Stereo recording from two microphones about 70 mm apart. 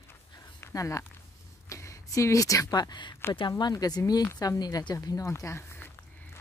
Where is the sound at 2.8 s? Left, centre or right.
Left.